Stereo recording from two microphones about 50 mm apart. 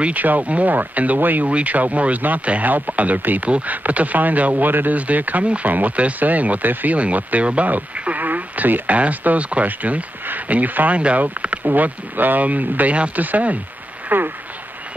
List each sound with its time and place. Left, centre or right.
0.0 s speech: right
7.4 s radio: right
8.9 s speech: right
14.0 s a sound: right